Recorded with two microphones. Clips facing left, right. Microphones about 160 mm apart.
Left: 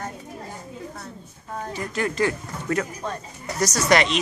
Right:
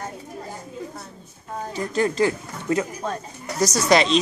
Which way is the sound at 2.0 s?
30° right (ahead or behind).